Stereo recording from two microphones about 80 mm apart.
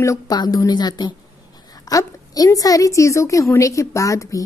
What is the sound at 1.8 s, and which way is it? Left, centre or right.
A woman's voice, left.